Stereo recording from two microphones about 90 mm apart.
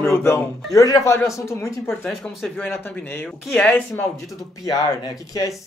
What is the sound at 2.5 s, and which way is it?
Speech, 20° left (ahead or behind).